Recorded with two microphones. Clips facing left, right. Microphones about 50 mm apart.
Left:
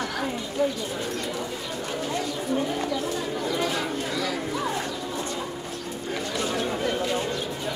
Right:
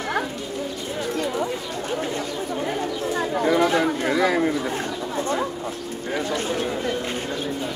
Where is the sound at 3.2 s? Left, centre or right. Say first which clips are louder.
Right 7 dB; right.